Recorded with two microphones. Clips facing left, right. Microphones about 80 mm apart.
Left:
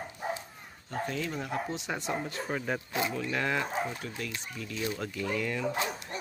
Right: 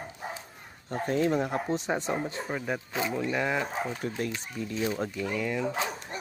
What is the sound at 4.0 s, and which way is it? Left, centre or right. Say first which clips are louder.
Speech: right 6 dB; right.